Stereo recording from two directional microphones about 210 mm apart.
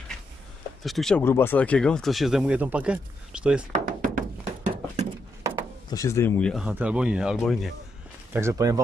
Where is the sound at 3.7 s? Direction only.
40° right (ahead or behind).